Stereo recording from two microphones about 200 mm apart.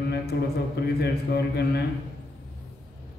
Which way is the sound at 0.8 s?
55° left (ahead or behind).